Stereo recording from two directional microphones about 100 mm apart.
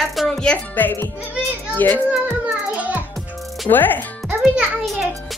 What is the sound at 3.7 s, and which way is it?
Speech, 20° left (ahead or behind).